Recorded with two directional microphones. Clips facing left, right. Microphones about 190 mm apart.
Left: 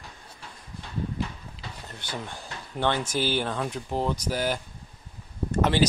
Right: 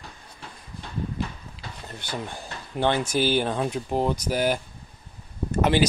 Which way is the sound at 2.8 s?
10° right (ahead or behind).